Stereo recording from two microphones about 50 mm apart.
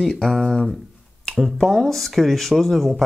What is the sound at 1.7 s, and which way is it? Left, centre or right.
Speech, centre.